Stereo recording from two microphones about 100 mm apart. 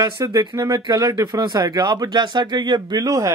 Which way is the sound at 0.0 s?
45° right (ahead or behind).